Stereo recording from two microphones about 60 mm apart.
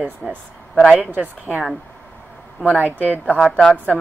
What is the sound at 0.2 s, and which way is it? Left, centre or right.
A woman's voice, centre.